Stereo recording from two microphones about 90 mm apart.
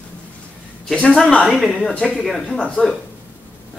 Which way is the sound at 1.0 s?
15° left (ahead or behind).